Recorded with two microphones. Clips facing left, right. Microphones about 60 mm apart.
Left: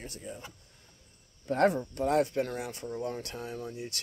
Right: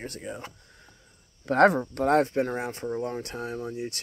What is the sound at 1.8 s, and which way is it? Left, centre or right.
Speech, right.